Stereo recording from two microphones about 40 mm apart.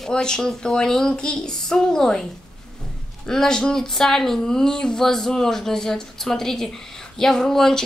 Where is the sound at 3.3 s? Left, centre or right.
Centre.